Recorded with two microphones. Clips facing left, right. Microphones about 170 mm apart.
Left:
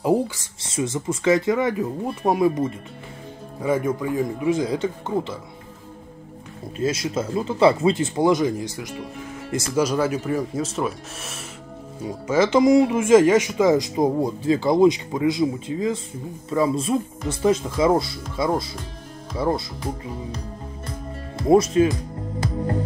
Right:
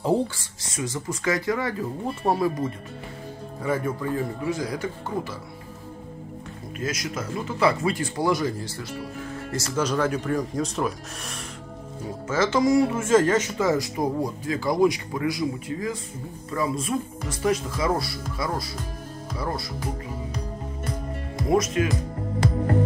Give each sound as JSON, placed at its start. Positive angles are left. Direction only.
{"t": 0.0, "sound": "speech", "side_deg": 10}
{"t": 0.7, "sound": "speech", "side_deg": 25}
{"t": 3.6, "sound": "speech", "side_deg": 15}
{"t": 6.8, "sound": "speech", "side_deg": 30}
{"t": 12.3, "sound": "speech", "side_deg": 15}
{"t": 21.5, "sound": "speech", "side_deg": 30}